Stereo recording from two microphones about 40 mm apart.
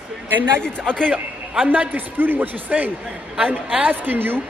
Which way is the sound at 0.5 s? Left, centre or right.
Left.